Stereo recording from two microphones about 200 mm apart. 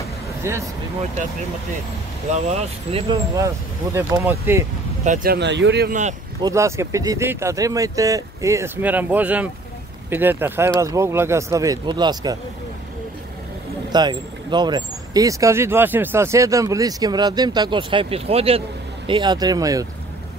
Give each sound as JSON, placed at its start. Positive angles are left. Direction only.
{"t": 0.4, "sound": "speech", "side_deg": -15}
{"t": 2.3, "sound": "speech", "side_deg": -30}
{"t": 3.3, "sound": "speech", "side_deg": -15}
{"t": 5.0, "sound": "speech", "side_deg": -45}
{"t": 6.4, "sound": "speech", "side_deg": -15}
{"t": 13.9, "sound": "speech", "side_deg": -20}